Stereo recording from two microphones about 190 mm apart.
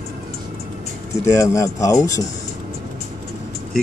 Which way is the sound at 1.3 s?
15° left (ahead or behind).